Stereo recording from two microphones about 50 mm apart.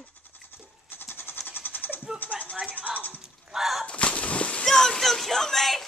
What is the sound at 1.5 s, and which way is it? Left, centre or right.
Cat, left.